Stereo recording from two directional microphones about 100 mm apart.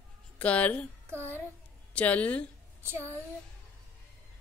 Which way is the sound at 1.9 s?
15° left (ahead or behind).